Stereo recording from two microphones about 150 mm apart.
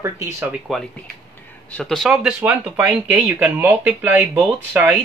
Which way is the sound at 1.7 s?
5° left (ahead or behind).